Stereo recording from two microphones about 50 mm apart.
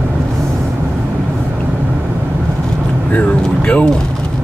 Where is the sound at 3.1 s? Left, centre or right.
Left.